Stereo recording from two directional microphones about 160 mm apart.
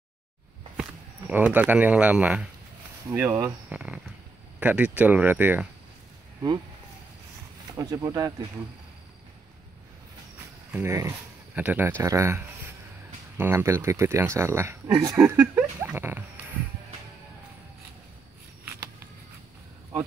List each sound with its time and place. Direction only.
0.7 s speech: 10° right (ahead or behind)
3.1 s speech: 15° right (ahead or behind)
7.7 s speech: 20° right (ahead or behind)
10.7 s speech: 15° right (ahead or behind)
15.2 s speech: 10° right (ahead or behind)